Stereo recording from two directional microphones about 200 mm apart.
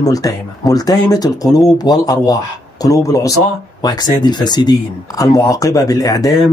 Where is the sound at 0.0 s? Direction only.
15° left (ahead or behind).